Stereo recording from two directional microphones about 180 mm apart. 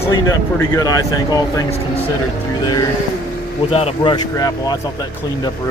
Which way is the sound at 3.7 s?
30° left (ahead or behind).